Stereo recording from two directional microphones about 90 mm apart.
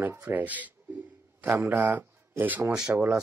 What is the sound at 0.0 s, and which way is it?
Speech, 25° right (ahead or behind).